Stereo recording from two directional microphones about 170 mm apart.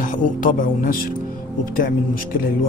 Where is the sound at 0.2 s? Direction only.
55° left (ahead or behind).